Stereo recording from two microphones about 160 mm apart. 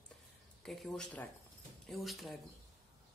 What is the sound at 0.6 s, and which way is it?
Speech, 5° left (ahead or behind).